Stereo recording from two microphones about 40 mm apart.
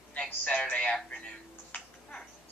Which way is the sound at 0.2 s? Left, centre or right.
Left.